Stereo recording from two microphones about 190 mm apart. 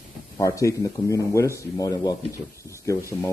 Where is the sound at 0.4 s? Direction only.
15° left (ahead or behind).